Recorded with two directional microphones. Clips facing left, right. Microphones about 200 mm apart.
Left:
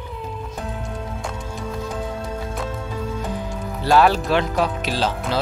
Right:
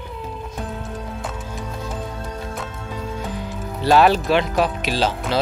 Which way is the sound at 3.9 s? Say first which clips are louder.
Right 1 dB; 15° right (ahead or behind).